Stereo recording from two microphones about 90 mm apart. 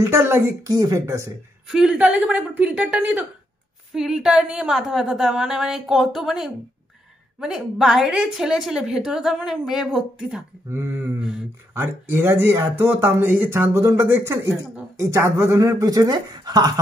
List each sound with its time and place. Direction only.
0.0 s speech: 25° right (ahead or behind)
0.7 s speech: 40° right (ahead or behind)
1.7 s a woman's voice: 10° right (ahead or behind)
3.9 s a woman's voice: 5° right (ahead or behind)
11.1 s a sound: 5° right (ahead or behind)
11.7 s speech: 25° right (ahead or behind); by 16.7 s 50° right (ahead or behind)